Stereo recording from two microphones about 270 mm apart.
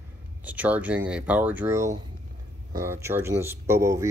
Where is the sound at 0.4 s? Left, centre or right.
Centre.